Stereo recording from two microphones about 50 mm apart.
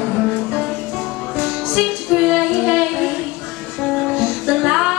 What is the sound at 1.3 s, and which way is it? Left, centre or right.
Music, centre.